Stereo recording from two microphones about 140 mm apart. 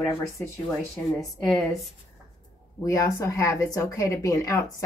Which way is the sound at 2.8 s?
25° left (ahead or behind).